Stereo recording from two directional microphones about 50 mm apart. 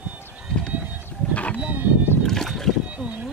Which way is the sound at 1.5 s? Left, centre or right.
Right.